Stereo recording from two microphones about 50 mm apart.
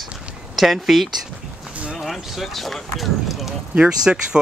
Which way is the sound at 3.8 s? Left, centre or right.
Centre.